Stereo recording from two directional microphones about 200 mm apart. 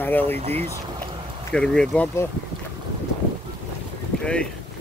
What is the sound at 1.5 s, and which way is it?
Speech, 5° left (ahead or behind).